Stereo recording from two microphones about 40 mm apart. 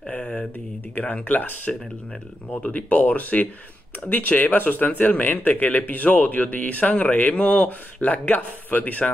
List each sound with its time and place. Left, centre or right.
0.2 s a sound: left
0.9 s speech: left
2.5 s speech: left